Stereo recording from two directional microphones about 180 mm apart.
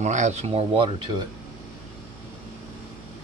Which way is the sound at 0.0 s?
40° right (ahead or behind).